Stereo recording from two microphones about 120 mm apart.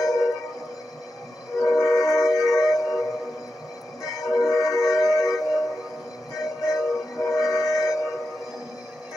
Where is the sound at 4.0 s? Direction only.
30° left (ahead or behind).